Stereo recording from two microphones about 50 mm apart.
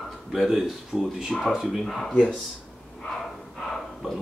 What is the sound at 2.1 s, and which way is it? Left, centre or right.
Speech, centre.